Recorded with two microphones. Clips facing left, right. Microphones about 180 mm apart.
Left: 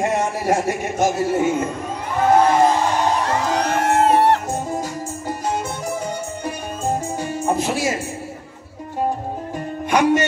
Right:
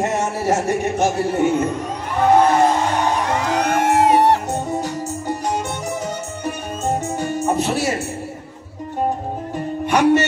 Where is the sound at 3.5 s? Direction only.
10° right (ahead or behind).